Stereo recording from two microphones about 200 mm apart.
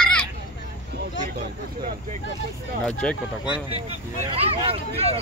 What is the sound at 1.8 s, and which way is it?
Speech, 50° right (ahead or behind).